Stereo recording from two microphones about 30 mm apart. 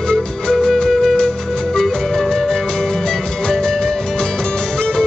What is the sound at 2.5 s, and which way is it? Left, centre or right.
Music, centre.